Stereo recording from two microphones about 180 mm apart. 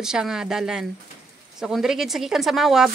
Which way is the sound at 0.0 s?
5° right (ahead or behind).